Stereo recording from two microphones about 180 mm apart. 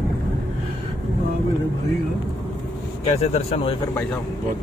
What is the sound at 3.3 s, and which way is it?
Speech, 30° left (ahead or behind).